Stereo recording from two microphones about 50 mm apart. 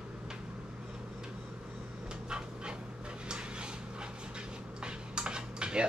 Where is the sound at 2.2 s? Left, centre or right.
Centre.